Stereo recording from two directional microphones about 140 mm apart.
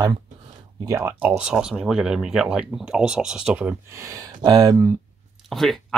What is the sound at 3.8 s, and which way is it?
Speech, 20° right (ahead or behind).